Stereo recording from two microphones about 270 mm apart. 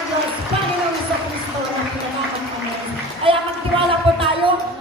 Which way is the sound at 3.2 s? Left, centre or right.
Centre.